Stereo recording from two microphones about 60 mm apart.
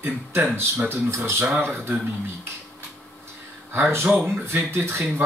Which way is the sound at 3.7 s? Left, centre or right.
Right.